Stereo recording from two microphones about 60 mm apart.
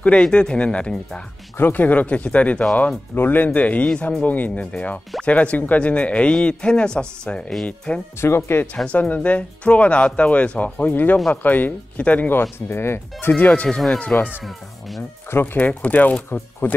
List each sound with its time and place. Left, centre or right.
0.0 s speech: centre
1.6 s speech: left
8.2 s speech: left
8.8 s speech: left
13.4 s speech: left
13.7 s speech: centre
15.3 s speech: left
16.6 s speech: left